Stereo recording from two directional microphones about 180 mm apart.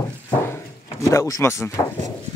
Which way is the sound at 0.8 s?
15° left (ahead or behind).